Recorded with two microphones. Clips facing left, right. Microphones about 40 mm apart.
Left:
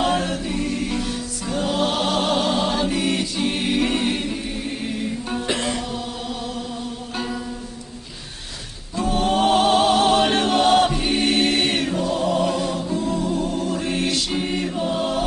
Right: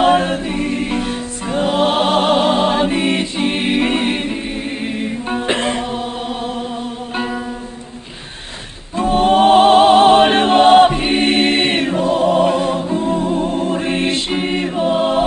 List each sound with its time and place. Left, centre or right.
0.0 s music: right
8.9 s music: right